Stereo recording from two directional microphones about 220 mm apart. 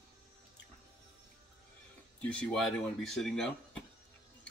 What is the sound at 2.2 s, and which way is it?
Speech, 5° left (ahead or behind).